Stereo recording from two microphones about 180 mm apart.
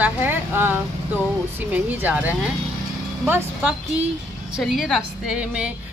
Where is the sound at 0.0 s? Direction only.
10° right (ahead or behind).